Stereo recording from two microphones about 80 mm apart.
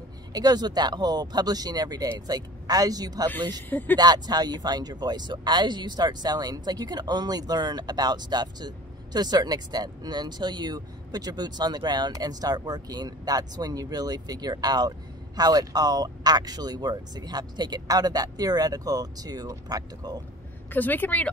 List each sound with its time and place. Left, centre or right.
0.3 s speech: right
20.7 s speech: left